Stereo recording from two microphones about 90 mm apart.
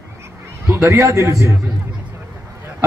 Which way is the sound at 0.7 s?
30° right (ahead or behind).